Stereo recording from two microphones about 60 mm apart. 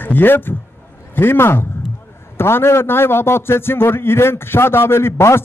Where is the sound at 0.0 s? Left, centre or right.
Left.